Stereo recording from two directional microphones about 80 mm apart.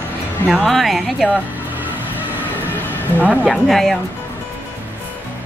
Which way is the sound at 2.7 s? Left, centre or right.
Left.